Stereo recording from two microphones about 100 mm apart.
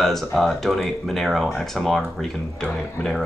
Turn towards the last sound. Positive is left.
turn(degrees=5)  # may be behind; listen again after turning